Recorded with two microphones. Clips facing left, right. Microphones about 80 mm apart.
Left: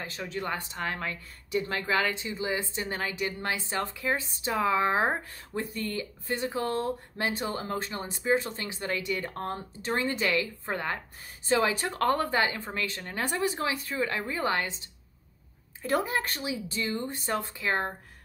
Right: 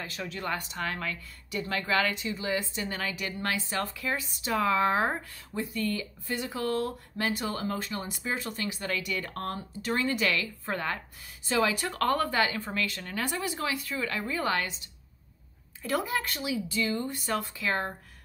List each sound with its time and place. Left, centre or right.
0.0 s speech: left
5.6 s a woman's voice: left